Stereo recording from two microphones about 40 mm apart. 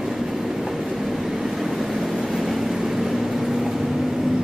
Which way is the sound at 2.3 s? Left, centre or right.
Centre.